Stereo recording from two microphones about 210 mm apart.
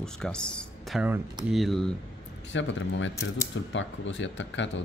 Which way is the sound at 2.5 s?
60° left (ahead or behind).